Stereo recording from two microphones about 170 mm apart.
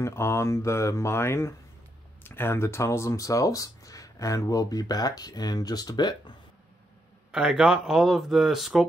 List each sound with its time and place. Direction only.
0.0 s speech: 15° left (ahead or behind)
7.2 s speech: 5° right (ahead or behind)